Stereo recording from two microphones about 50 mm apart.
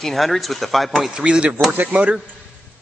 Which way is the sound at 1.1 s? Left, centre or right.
Centre.